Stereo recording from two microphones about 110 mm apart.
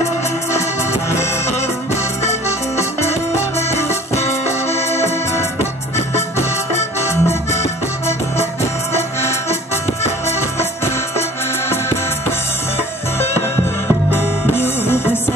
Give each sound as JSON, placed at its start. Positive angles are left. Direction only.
{"t": 2.8, "sound": "music", "side_deg": 25}
{"t": 10.0, "sound": "music", "side_deg": 25}
{"t": 11.7, "sound": "music", "side_deg": 20}
{"t": 14.5, "sound": "music", "side_deg": 20}